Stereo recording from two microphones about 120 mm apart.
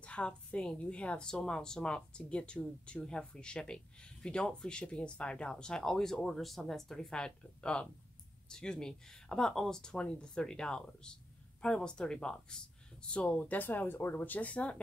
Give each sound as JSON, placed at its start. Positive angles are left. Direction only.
{"t": 0.0, "sound": "a woman's voice", "side_deg": 10}